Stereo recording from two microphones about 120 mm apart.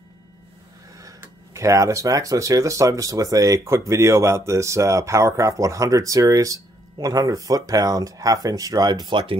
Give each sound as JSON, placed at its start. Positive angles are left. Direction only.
{"t": 0.9, "sound": "speech", "side_deg": -25}